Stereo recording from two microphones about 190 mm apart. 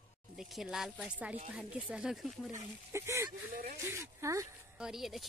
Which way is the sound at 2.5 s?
15° right (ahead or behind).